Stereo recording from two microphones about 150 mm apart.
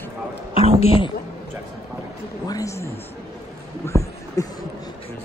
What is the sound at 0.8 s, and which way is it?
Speech, 40° left (ahead or behind).